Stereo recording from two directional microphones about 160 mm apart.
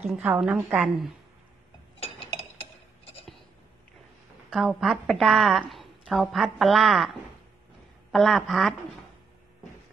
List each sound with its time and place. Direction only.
0.2 s a woman's voice: 5° right (ahead or behind)
2.0 s chink: 40° left (ahead or behind)
4.5 s a woman's voice: centre (ahead or behind)
8.1 s a woman's voice: centre (ahead or behind)